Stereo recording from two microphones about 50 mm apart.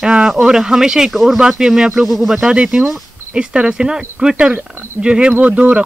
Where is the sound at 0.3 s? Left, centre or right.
Centre.